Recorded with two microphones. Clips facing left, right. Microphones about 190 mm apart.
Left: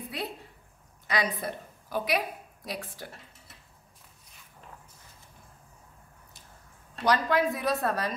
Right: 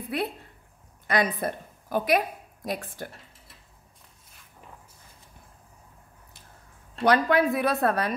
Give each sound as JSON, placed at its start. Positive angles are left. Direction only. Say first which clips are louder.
{"t": 0.1, "sound": "a woman's voice", "louder": "right 8 dB", "side_deg": -60}
{"t": 7.1, "sound": "a woman's voice", "louder": "right 4 dB", "side_deg": -60}